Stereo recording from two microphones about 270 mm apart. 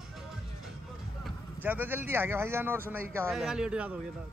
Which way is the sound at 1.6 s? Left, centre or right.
Centre.